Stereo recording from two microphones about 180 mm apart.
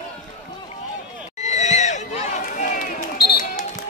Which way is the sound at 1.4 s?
40° left (ahead or behind).